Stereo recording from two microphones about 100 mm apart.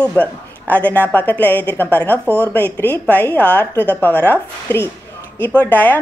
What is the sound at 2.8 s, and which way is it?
A woman's voice, 20° left (ahead or behind).